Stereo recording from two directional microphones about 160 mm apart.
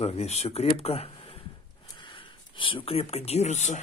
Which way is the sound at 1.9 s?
30° left (ahead or behind).